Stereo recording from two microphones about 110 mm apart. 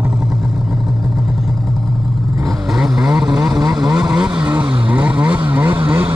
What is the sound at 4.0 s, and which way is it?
Vehicle, 10° right (ahead or behind).